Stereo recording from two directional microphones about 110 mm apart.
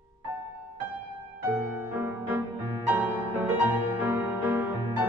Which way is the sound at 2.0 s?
20° right (ahead or behind).